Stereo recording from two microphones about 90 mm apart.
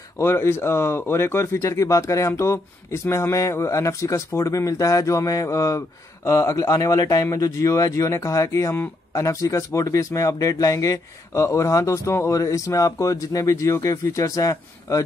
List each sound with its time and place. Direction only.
0.2 s speech: 30° left (ahead or behind)